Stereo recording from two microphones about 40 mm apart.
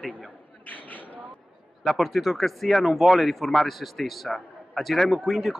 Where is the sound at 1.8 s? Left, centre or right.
Centre.